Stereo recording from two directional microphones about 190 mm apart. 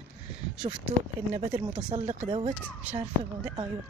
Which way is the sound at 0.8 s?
30° right (ahead or behind).